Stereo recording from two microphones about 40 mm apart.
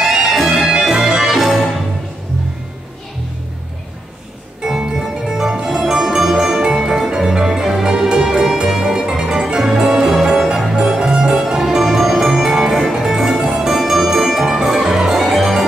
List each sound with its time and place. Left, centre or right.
0.0 s music: centre
1.4 s music: centre
4.6 s music: centre